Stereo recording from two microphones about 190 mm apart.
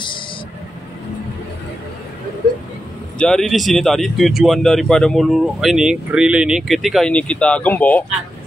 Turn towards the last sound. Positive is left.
turn(degrees=10)  # may be behind; listen again after turning